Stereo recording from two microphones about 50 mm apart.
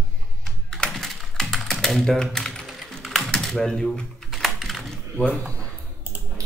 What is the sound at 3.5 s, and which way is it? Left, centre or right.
Speech, centre.